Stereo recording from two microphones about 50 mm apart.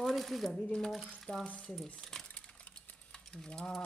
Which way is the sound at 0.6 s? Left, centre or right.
Centre.